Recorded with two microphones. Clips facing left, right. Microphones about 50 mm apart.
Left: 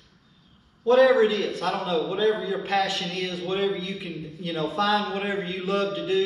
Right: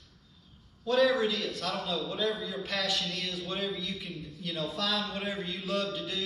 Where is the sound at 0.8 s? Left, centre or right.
Left.